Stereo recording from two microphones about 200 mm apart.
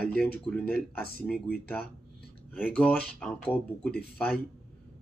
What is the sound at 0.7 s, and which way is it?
Speech, 45° right (ahead or behind).